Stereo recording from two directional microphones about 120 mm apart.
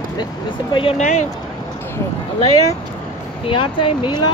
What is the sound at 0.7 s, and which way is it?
Speech, 50° left (ahead or behind).